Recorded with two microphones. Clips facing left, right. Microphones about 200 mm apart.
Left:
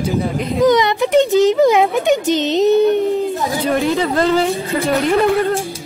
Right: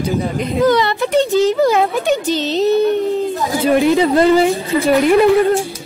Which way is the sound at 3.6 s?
15° right (ahead or behind).